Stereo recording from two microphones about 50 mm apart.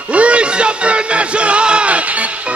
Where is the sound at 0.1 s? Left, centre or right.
Right.